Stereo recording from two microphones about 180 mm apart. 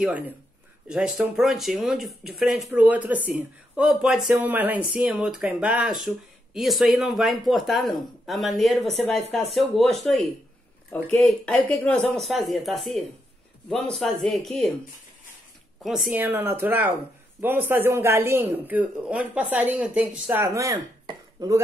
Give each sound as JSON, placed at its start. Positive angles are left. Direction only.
{"t": 0.8, "sound": "a man's voice", "side_deg": -5}
{"t": 16.1, "sound": "a man's voice", "side_deg": -10}